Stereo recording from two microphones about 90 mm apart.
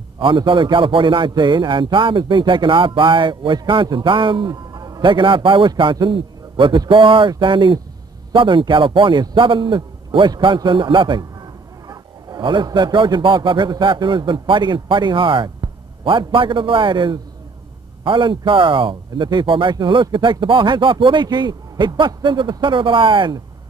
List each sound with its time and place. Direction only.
0.2 s speech: 65° right (ahead or behind); by 5.0 s 45° right (ahead or behind)
5.0 s a man's voice: 65° right (ahead or behind)